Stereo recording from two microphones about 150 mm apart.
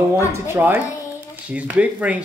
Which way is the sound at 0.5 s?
15° right (ahead or behind).